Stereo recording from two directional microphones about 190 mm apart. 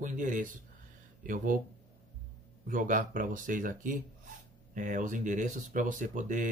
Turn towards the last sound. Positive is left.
turn(degrees=-45)  # may be behind; listen again after turning